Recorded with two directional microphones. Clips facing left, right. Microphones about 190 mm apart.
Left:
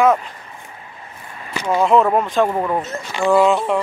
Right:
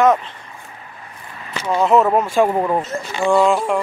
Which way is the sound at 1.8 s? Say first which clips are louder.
Even; 5° right (ahead or behind).